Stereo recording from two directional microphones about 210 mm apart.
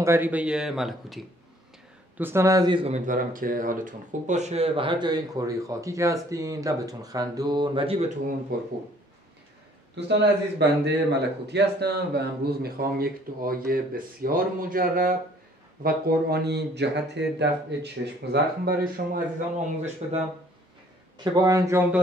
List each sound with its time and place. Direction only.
0.0 s a man's voice: 10° right (ahead or behind)
3.1 s speech: 40° right (ahead or behind); by 8.0 s 25° right (ahead or behind)
9.9 s a man's voice: 55° right (ahead or behind)
21.2 s a man's voice: 15° right (ahead or behind)